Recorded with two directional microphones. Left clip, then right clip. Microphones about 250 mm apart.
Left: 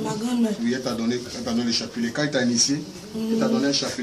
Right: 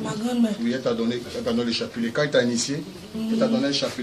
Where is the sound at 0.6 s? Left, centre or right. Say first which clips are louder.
Right 2 dB; right.